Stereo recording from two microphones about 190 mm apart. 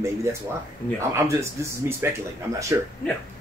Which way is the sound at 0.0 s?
15° right (ahead or behind).